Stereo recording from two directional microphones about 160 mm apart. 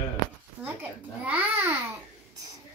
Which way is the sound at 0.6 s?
10° right (ahead or behind).